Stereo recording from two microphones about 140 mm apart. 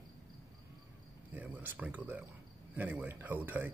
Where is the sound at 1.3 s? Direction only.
10° right (ahead or behind).